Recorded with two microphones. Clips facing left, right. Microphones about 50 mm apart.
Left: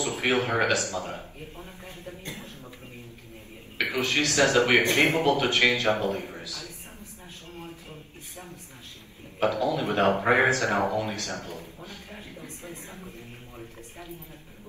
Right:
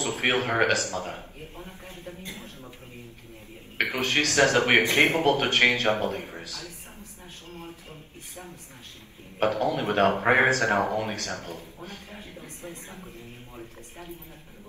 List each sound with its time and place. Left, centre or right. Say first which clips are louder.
0.0 s a man's voice: even; right
3.7 s a man's voice: right 1 dB; right
9.4 s a man's voice: even; right